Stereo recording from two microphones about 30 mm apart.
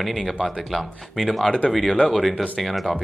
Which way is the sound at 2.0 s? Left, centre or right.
Centre.